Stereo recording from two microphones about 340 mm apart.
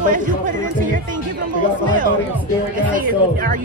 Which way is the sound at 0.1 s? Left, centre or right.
Right.